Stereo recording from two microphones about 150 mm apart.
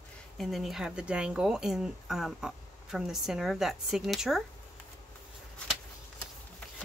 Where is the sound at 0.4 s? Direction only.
Centre (ahead or behind).